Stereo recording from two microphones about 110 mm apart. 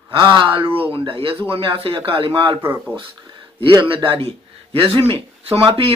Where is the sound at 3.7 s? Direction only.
50° right (ahead or behind).